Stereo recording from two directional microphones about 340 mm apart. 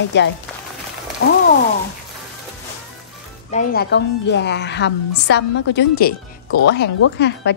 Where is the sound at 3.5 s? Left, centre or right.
Left.